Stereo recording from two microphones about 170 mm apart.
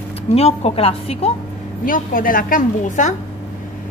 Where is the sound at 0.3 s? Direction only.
35° left (ahead or behind).